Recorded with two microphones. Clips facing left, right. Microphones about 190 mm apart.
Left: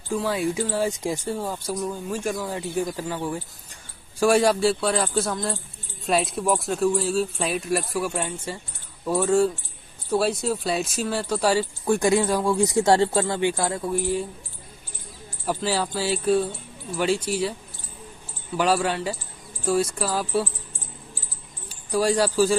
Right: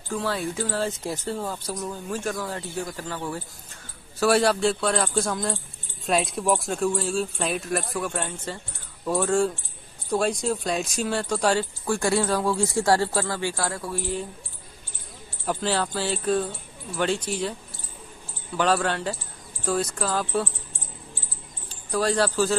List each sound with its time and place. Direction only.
0.1 s speech: 10° left (ahead or behind)
11.8 s speech: 20° left (ahead or behind)
15.4 s speech: 10° left (ahead or behind)
18.6 s speech: 10° left (ahead or behind)
21.6 s speech: 10° left (ahead or behind)